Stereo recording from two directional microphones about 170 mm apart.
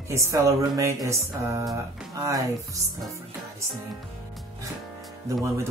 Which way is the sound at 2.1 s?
20° right (ahead or behind).